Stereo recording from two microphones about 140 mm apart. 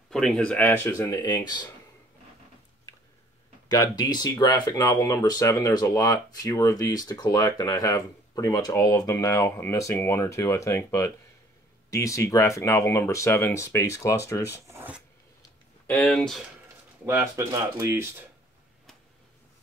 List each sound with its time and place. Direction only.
0.1 s speech: 5° left (ahead or behind); by 1.7 s 30° left (ahead or behind)
3.7 s speech: 30° left (ahead or behind)
14.7 s a sound: 15° right (ahead or behind)
16.1 s speech: centre (ahead or behind)
17.0 s speech: 20° right (ahead or behind)